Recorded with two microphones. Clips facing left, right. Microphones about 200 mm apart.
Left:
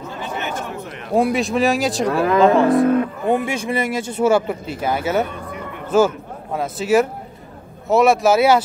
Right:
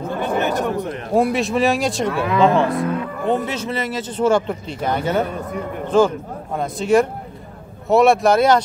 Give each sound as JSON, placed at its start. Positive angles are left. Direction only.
{"t": 0.0, "sound": "a sound", "side_deg": -55}
{"t": 0.4, "sound": "chatter", "side_deg": -35}
{"t": 1.1, "sound": "speech", "side_deg": 0}
{"t": 3.4, "sound": "speech", "side_deg": 10}